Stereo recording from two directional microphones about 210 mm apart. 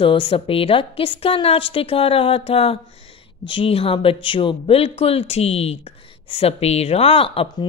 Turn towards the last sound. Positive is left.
turn(degrees=25)  # may be behind; listen again after turning